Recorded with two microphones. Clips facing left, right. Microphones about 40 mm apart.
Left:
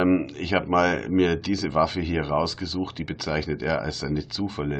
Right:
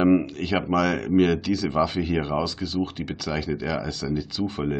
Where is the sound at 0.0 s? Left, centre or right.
Centre.